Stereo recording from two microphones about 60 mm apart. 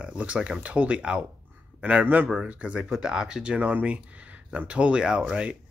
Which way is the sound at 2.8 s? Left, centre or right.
Centre.